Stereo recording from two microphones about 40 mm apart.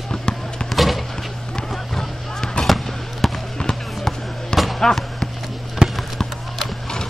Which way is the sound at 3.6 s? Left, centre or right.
Centre.